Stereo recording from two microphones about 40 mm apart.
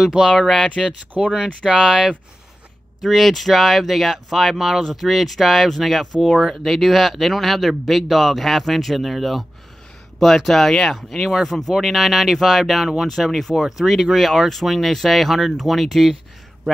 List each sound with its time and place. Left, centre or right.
0.0 s speech: centre
0.4 s speech: centre
1.6 s speech: centre
3.0 s speech: centre